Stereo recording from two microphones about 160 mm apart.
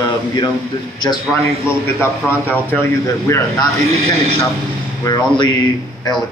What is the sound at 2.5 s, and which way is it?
A man's voice, 10° left (ahead or behind).